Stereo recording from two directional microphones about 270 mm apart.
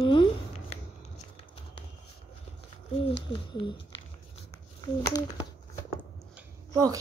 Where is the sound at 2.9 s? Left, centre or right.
Left.